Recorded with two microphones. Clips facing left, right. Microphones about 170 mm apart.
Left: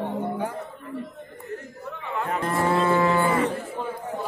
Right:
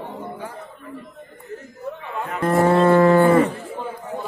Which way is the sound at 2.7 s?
50° right (ahead or behind).